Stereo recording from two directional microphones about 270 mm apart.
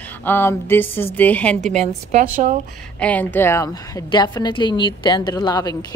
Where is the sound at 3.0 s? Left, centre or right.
Centre.